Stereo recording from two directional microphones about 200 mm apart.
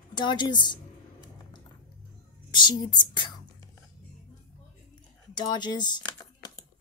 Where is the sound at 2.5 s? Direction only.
20° left (ahead or behind).